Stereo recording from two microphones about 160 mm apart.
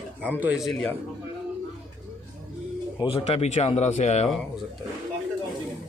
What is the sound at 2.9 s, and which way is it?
Speech, 35° left (ahead or behind).